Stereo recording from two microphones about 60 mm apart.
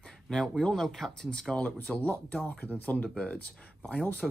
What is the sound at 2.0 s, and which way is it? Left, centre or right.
Speech, left.